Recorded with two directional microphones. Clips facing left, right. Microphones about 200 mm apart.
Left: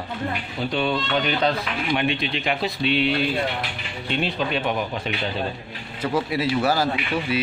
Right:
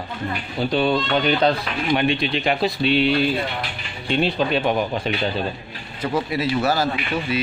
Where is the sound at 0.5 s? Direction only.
35° right (ahead or behind).